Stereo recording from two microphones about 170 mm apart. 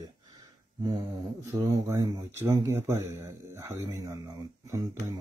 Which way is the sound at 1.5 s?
15° right (ahead or behind).